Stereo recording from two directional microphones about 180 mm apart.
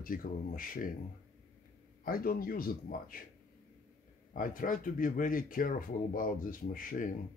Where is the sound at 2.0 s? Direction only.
55° left (ahead or behind).